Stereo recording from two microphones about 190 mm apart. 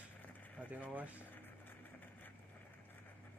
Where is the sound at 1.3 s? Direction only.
10° left (ahead or behind).